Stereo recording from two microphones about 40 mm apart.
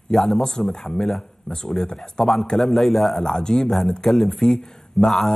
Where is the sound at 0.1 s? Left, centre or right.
Centre.